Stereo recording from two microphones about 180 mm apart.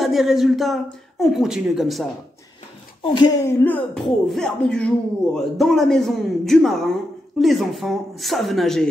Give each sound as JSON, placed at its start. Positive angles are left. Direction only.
{"t": 0.0, "sound": "speech", "side_deg": 0}
{"t": 3.0, "sound": "speech", "side_deg": 25}
{"t": 3.4, "sound": "speech", "side_deg": 10}